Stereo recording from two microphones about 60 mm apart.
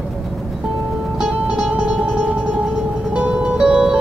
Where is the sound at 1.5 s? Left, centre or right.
Centre.